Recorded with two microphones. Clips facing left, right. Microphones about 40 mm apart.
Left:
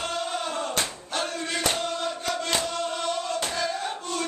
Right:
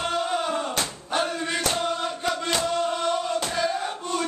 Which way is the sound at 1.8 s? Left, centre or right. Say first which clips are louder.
Right 3 dB; centre.